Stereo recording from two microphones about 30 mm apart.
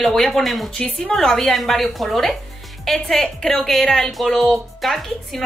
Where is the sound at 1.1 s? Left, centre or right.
Centre.